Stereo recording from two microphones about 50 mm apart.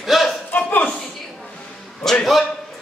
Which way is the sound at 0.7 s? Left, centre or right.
Left.